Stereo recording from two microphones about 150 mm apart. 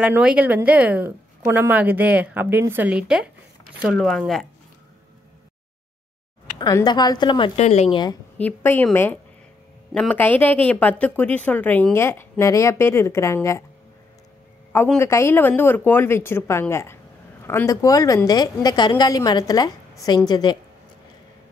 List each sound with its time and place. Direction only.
0.0 s a woman's voice: 10° right (ahead or behind)
6.6 s a woman's voice: 25° left (ahead or behind)
7.5 s speech: 45° left (ahead or behind)
8.4 s a woman's voice: 10° left (ahead or behind)
15.0 s a woman's voice: 20° left (ahead or behind)